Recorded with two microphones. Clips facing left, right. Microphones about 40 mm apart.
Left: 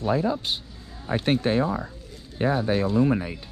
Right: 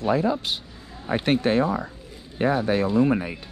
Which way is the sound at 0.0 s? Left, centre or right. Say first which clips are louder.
Right 2 dB; right.